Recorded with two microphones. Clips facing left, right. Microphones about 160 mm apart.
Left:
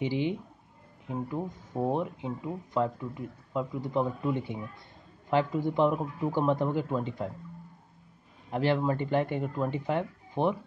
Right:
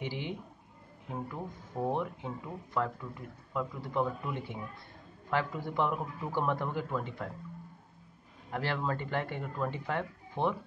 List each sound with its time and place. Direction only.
0.0 s speech: 20° left (ahead or behind)
8.5 s speech: 20° left (ahead or behind)